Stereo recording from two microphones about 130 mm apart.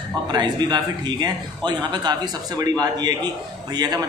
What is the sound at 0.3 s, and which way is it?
A man's voice, 35° right (ahead or behind).